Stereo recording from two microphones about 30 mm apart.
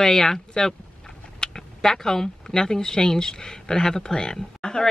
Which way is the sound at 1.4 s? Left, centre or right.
Centre.